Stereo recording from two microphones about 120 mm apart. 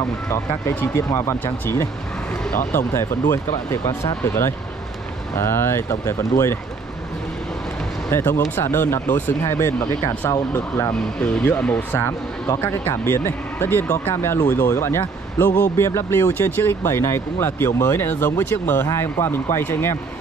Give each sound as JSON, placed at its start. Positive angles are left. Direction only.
{"t": 0.3, "sound": "speech", "side_deg": 20}
{"t": 8.1, "sound": "speech", "side_deg": 20}
{"t": 11.1, "sound": "speech", "side_deg": 10}